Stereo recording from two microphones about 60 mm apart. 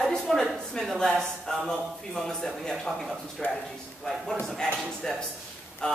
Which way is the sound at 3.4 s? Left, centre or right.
Left.